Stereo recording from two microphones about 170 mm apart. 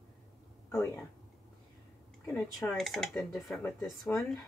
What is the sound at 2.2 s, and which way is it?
Speech, 5° left (ahead or behind).